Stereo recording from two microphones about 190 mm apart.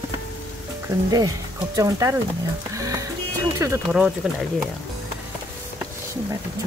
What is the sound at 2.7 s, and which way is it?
Music, 15° right (ahead or behind).